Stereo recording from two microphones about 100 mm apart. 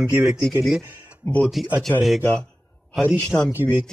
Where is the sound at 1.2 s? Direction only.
15° left (ahead or behind).